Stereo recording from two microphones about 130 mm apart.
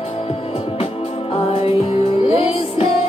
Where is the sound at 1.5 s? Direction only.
45° left (ahead or behind).